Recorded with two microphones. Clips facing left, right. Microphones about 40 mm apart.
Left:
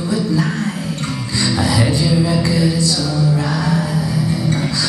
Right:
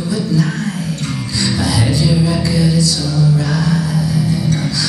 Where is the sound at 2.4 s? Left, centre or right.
Left.